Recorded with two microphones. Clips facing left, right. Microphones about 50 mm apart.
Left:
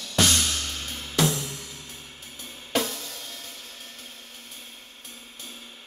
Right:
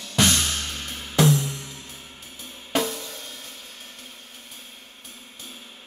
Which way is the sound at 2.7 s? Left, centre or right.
Centre.